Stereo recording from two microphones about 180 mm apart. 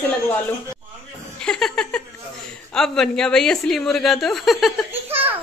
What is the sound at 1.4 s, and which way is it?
Laughter, 5° left (ahead or behind).